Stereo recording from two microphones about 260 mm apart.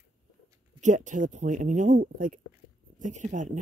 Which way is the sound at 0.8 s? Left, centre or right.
Right.